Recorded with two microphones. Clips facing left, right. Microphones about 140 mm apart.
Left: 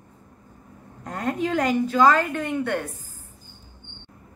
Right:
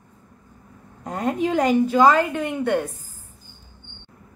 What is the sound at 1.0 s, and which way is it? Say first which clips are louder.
A woman's voice: right 3 dB; 15° right (ahead or behind).